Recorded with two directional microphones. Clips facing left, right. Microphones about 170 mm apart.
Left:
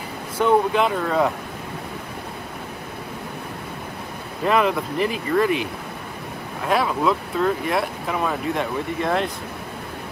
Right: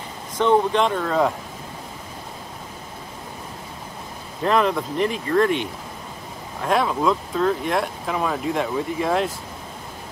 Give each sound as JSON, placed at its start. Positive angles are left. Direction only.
{"t": 0.4, "sound": "speech", "side_deg": 5}
{"t": 4.5, "sound": "speech", "side_deg": 5}